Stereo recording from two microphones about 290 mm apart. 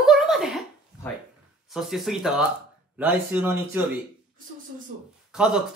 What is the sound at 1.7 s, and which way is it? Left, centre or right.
Speech, centre.